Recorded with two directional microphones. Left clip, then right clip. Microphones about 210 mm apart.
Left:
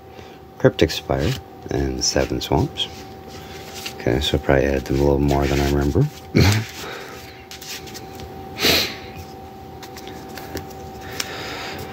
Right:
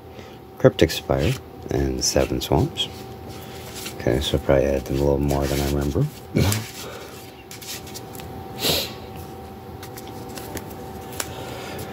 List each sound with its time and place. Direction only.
0.6 s speech: centre (ahead or behind); by 5.5 s 20° left (ahead or behind)
5.7 s speech: 30° left (ahead or behind)
8.5 s snort: 35° left (ahead or behind)
11.3 s a sound: 25° left (ahead or behind)